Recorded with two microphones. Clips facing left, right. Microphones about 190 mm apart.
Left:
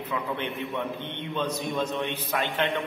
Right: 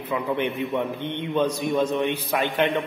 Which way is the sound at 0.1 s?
15° right (ahead or behind).